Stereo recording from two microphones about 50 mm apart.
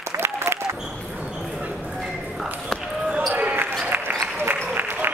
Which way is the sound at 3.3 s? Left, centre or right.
Right.